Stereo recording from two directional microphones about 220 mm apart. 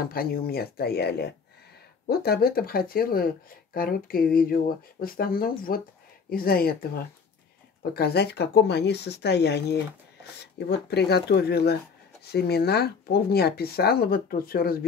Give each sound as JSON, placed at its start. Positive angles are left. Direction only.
{"t": 0.0, "sound": "speech", "side_deg": 45}
{"t": 7.9, "sound": "speech", "side_deg": 45}